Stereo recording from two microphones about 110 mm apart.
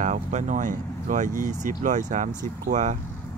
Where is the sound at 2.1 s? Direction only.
90° right.